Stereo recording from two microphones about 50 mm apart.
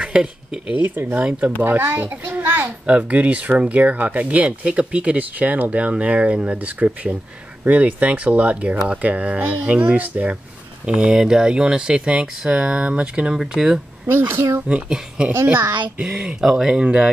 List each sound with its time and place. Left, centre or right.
0.0 s speech: right
1.6 s a child's voice: right
2.9 s speech: right
10.9 s speech: centre
14.0 s a child's voice: right
14.7 s speech: right
15.5 s a child's voice: right
16.0 s speech: right
16.3 s speech: centre